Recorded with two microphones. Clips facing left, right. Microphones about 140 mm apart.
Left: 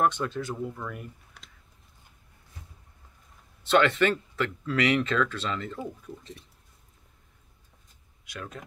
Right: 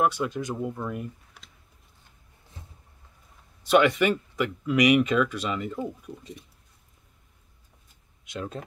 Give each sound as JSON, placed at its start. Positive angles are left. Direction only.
{"t": 0.0, "sound": "speech", "side_deg": -10}
{"t": 3.6, "sound": "speech", "side_deg": -10}
{"t": 8.3, "sound": "speech", "side_deg": -25}